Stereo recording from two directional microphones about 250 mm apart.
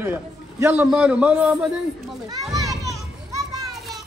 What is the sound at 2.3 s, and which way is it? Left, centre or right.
Speech, centre.